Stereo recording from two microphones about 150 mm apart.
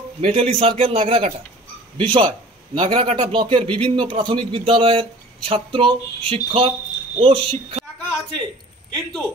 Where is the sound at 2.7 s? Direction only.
35° right (ahead or behind).